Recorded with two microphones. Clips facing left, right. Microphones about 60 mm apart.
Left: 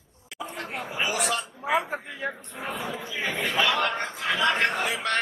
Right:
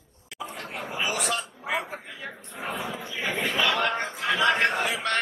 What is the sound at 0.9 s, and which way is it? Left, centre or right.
A man's voice, centre.